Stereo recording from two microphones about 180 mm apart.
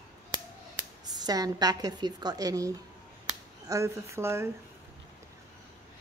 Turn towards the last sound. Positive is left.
turn(degrees=-15)  # may be behind; listen again after turning